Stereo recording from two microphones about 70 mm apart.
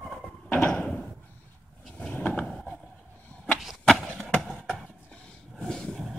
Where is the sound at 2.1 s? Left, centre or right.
Left.